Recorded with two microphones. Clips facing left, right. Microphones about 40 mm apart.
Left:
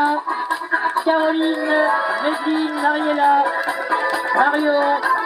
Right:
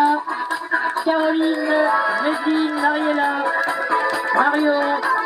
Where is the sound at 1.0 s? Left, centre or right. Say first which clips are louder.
Even; left.